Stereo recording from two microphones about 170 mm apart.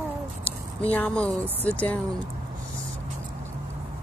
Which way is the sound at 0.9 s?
10° left (ahead or behind).